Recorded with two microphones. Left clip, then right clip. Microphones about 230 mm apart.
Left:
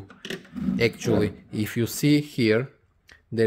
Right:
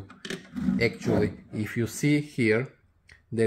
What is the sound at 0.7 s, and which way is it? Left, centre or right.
Speech, left.